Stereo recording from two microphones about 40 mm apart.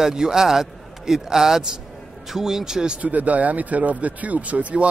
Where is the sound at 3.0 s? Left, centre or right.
Right.